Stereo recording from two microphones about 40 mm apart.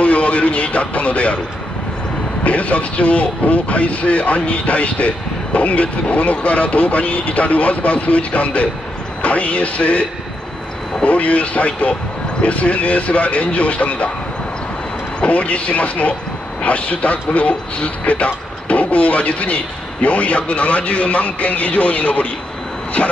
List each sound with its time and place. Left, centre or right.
0.0 s speech: left
2.4 s speech: left
11.1 s speech: left
15.1 s speech: left